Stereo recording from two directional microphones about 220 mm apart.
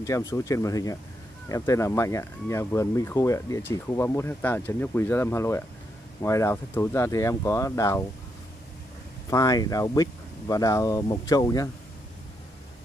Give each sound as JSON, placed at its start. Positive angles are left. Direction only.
{"t": 0.0, "sound": "speech", "side_deg": 15}
{"t": 9.3, "sound": "speech", "side_deg": 15}